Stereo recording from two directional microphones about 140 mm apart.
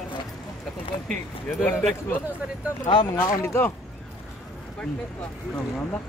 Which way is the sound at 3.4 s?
20° left (ahead or behind).